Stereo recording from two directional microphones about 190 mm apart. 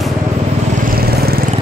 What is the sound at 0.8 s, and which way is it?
Vehicle, 50° right (ahead or behind).